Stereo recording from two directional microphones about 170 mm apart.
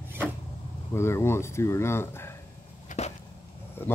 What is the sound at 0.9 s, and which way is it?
Speech, 15° left (ahead or behind).